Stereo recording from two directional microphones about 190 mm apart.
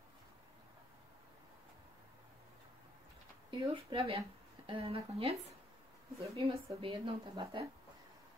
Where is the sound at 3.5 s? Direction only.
30° right (ahead or behind).